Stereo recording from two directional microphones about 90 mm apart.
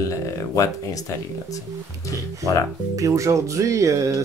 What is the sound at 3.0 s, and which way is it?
Speech, 40° right (ahead or behind).